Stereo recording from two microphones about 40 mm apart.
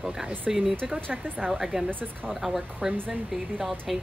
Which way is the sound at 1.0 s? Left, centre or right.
Right.